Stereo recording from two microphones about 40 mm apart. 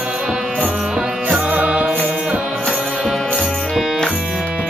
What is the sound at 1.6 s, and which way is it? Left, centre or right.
Music, right.